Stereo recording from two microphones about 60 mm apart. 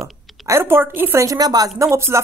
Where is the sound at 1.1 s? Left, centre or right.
Right.